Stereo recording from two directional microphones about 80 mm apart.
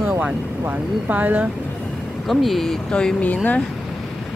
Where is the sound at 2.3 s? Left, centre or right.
Centre.